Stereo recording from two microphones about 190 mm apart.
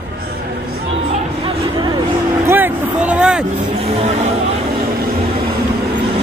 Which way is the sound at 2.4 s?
10° right (ahead or behind).